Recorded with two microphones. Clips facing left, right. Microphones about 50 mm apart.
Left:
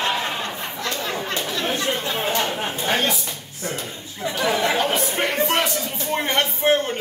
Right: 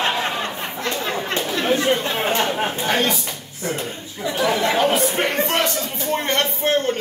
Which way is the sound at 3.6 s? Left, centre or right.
Right.